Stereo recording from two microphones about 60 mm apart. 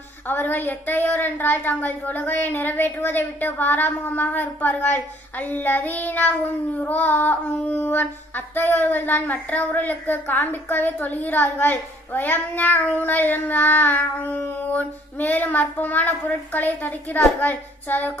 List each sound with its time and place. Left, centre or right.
0.3 s a woman's voice: left